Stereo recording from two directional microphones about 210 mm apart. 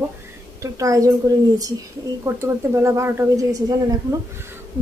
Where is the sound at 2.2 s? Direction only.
15° right (ahead or behind).